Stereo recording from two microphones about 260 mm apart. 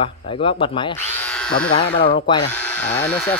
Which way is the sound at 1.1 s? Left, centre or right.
Centre.